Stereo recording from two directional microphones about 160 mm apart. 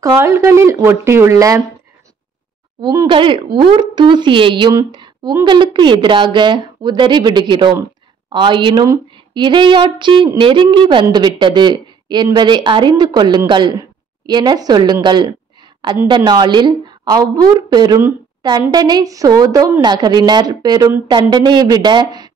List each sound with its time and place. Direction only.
0.0 s speech: 20° right (ahead or behind)
2.8 s a woman's voice: 25° right (ahead or behind)